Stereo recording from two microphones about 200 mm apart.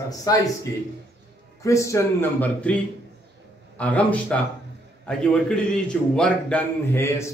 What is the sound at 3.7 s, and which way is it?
A man's voice, 5° left (ahead or behind).